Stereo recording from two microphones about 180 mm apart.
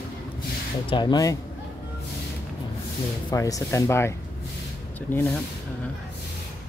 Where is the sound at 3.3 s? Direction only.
20° left (ahead or behind).